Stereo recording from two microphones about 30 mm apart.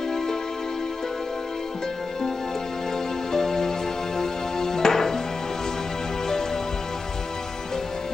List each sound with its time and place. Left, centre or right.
3.3 s music: centre